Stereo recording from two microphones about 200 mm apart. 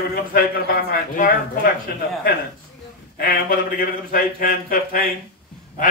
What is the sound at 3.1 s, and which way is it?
A man's voice, 45° left (ahead or behind).